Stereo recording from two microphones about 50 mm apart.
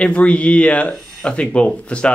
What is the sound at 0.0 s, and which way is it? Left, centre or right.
Speech, left.